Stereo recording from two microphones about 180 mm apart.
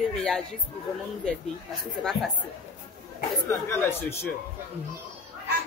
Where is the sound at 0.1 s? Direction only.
5° left (ahead or behind).